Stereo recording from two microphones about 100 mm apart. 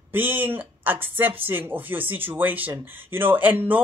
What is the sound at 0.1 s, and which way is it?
Speech, 20° right (ahead or behind).